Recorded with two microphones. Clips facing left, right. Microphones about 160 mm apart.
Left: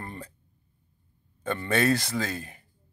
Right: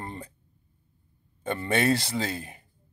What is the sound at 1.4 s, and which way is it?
Speech, 25° right (ahead or behind).